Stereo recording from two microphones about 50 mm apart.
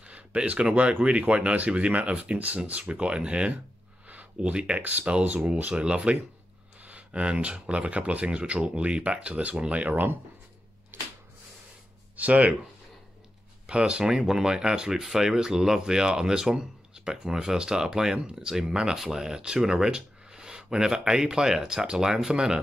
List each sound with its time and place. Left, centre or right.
0.0 s speech: right
12.2 s speech: right
13.7 s speech: right
14.1 s speech: centre